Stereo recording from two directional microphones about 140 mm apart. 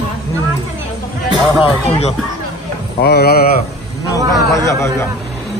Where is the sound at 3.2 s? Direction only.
90° left.